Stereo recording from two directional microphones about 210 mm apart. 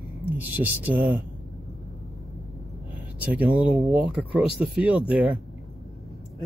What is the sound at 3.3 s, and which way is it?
Speech, 5° right (ahead or behind).